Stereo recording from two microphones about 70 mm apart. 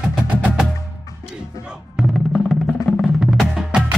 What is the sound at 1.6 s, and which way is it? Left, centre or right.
Music, centre.